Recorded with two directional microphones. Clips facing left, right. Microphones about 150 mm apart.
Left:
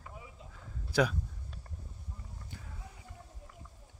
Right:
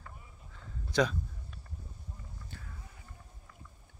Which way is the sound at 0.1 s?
90° left.